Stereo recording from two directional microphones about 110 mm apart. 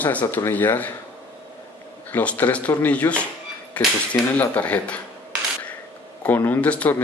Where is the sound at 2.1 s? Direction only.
15° left (ahead or behind).